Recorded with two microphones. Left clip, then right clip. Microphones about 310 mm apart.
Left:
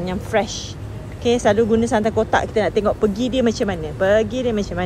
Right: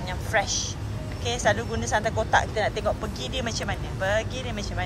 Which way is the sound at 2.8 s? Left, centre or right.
Left.